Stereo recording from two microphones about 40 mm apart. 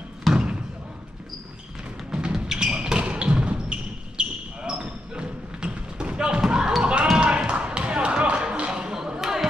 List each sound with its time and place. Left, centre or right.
0.3 s basketball bounce: centre
2.3 s music: centre
3.1 s basketball bounce: right
6.8 s basketball bounce: right
7.2 s tap: right
7.5 s a sound: right; by 9.5 s centre